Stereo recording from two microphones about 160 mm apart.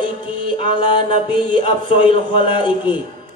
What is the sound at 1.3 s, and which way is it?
Speech, 30° left (ahead or behind).